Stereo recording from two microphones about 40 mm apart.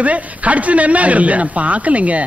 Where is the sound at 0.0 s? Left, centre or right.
Right.